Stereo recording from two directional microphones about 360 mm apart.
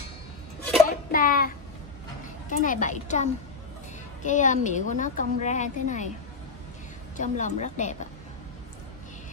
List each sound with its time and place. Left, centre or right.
1.1 s speech: left
2.6 s a woman's voice: left
7.2 s a woman's voice: centre